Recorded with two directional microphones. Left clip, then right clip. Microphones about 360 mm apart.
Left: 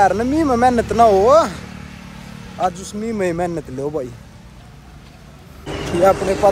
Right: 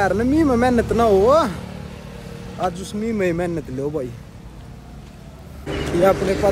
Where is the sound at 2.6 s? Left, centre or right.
Centre.